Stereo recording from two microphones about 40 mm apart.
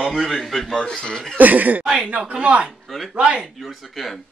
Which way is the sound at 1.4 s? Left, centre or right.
Right.